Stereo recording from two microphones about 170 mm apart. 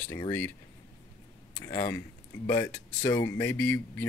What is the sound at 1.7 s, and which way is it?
Speech, 20° left (ahead or behind).